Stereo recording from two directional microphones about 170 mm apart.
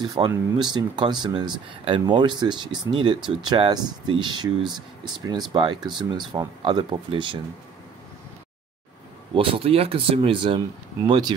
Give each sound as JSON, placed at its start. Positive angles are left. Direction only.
{"t": 0.2, "sound": "speech", "side_deg": -25}
{"t": 9.3, "sound": "speech", "side_deg": -35}